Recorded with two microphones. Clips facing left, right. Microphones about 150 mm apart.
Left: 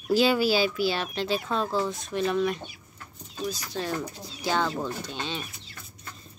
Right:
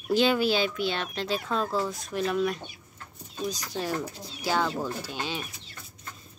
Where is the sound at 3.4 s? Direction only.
10° right (ahead or behind).